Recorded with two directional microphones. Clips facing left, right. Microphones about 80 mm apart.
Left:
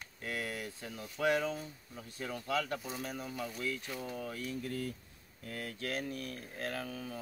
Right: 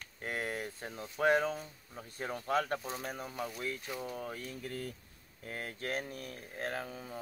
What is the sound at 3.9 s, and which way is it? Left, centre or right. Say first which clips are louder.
Speech: right 1 dB; centre.